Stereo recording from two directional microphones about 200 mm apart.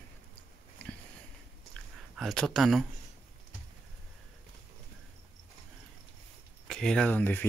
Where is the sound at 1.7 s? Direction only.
Centre (ahead or behind).